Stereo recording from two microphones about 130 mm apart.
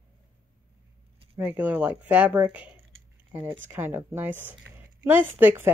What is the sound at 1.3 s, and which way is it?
Speech, 15° right (ahead or behind).